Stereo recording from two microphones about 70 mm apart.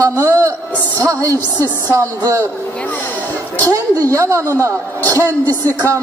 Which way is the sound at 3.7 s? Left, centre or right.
Right.